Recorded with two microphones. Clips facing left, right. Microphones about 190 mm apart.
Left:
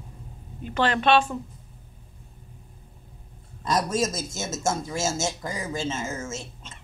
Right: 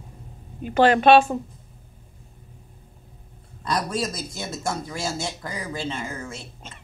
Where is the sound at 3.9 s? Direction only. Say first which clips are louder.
Left 2 dB; 45° left (ahead or behind).